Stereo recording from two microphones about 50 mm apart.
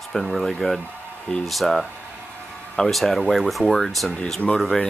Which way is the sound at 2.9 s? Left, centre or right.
Centre.